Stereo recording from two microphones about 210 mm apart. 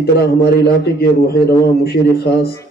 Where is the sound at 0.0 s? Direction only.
50° left (ahead or behind).